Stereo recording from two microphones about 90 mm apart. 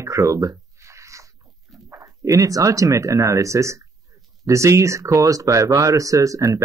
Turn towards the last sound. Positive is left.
turn(degrees=-40)  # may be behind; listen again after turning